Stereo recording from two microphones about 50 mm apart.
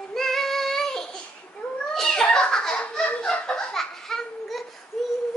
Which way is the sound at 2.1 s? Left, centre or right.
Centre.